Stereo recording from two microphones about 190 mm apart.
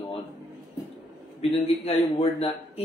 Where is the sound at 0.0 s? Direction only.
30° left (ahead or behind).